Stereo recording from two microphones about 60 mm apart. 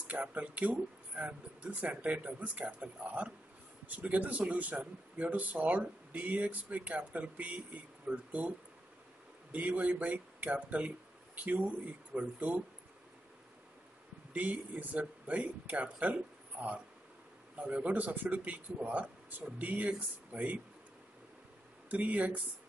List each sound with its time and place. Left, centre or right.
0.0 s speech: right
14.3 s speech: right
17.6 s speech: right
21.9 s speech: right